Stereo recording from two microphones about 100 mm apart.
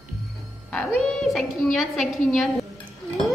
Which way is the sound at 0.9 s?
5° left (ahead or behind).